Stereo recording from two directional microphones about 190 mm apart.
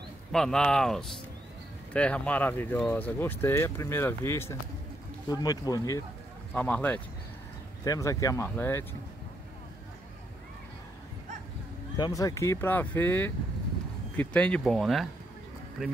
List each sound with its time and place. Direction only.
0.3 s speech: 5° left (ahead or behind)
12.0 s speech: 20° left (ahead or behind); by 15.9 s 5° right (ahead or behind)